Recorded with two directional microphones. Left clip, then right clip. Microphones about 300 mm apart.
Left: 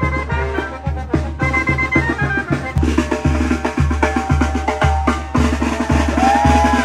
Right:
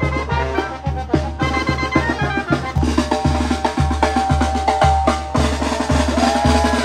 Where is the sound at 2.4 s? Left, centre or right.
Right.